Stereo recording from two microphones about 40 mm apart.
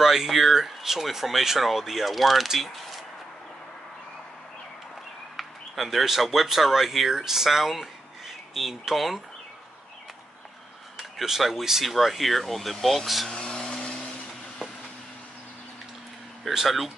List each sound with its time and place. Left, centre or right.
0.0 s speech: centre
5.3 s speech: centre
11.0 s speech: centre
13.3 s a sound: centre
16.4 s speech: centre